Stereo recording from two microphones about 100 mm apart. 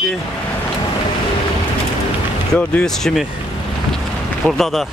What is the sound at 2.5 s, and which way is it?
Speech, 5° left (ahead or behind).